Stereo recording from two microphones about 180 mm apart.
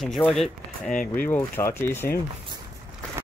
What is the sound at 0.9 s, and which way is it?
Speech, 50° left (ahead or behind).